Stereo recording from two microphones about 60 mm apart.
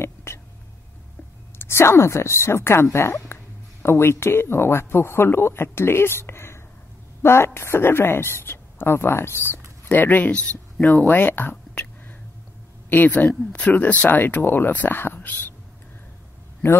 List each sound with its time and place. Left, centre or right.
0.0 s whispering: left
1.6 s speech: left
9.8 s speech: left
11.5 s whispering: left
12.9 s speech: left